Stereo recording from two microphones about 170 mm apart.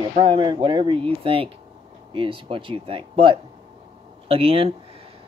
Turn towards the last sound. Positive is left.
turn(degrees=-35)  # may be behind; listen again after turning